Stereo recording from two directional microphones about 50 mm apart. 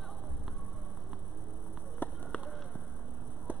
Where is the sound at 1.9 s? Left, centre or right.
Left.